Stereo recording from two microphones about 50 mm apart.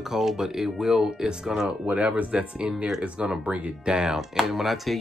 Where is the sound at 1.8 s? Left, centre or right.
Right.